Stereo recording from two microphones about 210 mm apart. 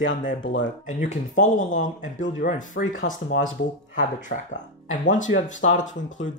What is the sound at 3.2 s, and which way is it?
Speech, 60° left (ahead or behind).